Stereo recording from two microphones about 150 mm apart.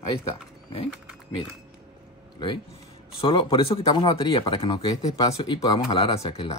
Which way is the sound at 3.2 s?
35° left (ahead or behind).